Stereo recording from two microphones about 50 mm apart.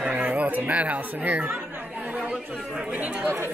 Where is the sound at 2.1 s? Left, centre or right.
Right.